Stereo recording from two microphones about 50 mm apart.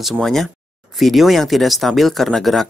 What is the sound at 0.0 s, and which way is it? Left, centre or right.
Speech, centre.